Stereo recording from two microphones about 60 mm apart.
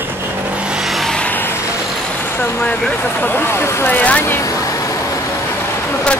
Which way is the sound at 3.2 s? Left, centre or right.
Left.